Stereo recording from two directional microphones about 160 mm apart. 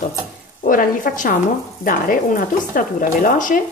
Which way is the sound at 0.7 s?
60° left (ahead or behind).